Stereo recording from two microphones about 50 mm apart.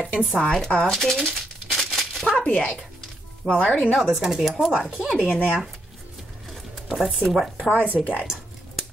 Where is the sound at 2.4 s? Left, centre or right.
Left.